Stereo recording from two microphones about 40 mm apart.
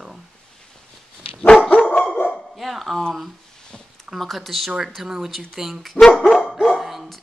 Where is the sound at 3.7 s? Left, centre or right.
Centre.